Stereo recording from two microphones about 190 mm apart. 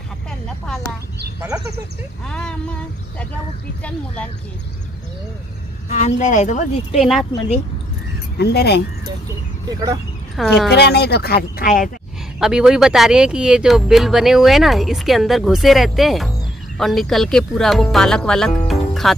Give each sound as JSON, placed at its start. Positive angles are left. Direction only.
{"t": 2.2, "sound": "speech", "side_deg": 5}
{"t": 5.9, "sound": "speech", "side_deg": 35}
{"t": 7.0, "sound": "speech", "side_deg": 0}
{"t": 8.4, "sound": "speech", "side_deg": 60}
{"t": 9.7, "sound": "speech", "side_deg": -20}
{"t": 10.3, "sound": "speech", "side_deg": 0}
{"t": 10.7, "sound": "speech", "side_deg": 60}
{"t": 12.4, "sound": "speech", "side_deg": 0}
{"t": 18.7, "sound": "music", "side_deg": 0}